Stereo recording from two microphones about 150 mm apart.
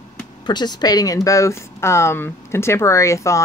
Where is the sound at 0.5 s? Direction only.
30° left (ahead or behind).